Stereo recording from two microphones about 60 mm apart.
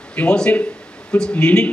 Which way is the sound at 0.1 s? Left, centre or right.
Centre.